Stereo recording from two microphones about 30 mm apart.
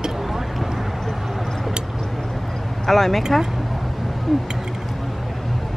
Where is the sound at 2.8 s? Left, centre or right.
Centre.